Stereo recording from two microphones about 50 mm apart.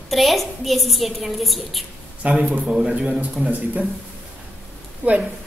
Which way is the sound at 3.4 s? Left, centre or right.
Right.